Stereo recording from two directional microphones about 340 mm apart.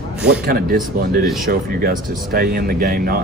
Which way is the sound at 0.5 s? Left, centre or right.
Right.